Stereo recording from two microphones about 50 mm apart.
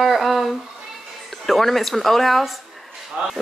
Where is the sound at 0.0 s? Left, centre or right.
Centre.